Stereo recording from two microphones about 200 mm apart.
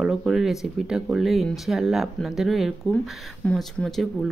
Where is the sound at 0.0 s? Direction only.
5° right (ahead or behind).